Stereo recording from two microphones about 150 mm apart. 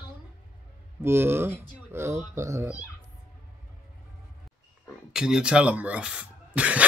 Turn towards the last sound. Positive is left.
turn(degrees=-10)  # may be behind; listen again after turning